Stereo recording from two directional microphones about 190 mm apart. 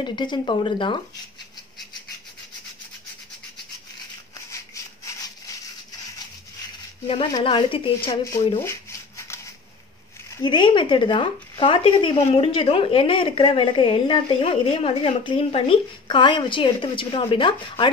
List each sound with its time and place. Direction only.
0.0 s speech: 25° left (ahead or behind)
7.1 s speech: 30° left (ahead or behind)
8.6 s a sound: 15° left (ahead or behind)
10.3 s speech: 25° left (ahead or behind)